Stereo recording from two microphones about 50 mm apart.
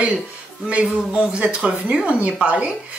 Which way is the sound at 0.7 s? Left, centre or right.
Right.